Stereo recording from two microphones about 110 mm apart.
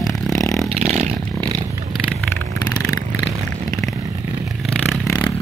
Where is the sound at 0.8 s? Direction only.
90° right.